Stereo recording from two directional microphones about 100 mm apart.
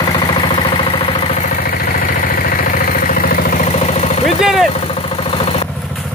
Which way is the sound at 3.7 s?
90° left.